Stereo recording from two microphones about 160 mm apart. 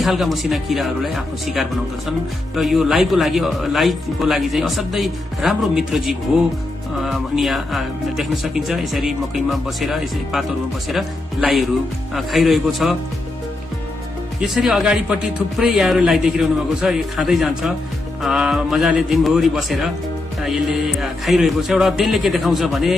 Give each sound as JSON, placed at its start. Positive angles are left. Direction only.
{"t": 0.0, "sound": "speech", "side_deg": 0}
{"t": 14.4, "sound": "speech", "side_deg": 0}